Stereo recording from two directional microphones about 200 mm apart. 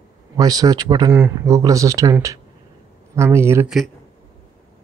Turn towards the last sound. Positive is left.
turn(degrees=-15)  # may be behind; listen again after turning